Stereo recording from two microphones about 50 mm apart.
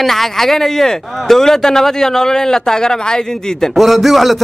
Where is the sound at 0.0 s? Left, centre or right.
Centre.